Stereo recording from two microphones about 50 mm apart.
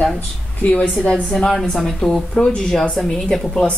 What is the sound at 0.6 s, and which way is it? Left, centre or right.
Speech, left.